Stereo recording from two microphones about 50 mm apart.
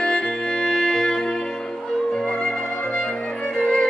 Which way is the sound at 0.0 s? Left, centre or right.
Centre.